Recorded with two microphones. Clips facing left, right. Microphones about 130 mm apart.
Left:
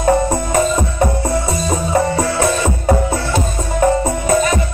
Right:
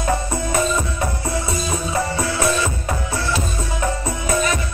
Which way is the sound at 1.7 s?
35° left (ahead or behind).